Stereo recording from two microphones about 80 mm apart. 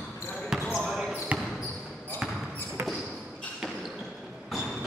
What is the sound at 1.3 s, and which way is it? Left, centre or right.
Basketball bounce, centre.